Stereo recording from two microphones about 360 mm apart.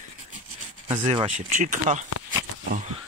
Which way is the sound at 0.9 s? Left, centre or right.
Centre.